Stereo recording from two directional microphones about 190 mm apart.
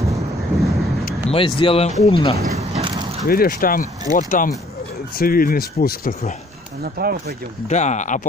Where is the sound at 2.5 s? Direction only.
35° right (ahead or behind).